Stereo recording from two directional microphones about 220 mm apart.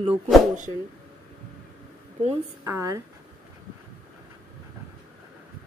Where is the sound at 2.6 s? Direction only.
15° right (ahead or behind).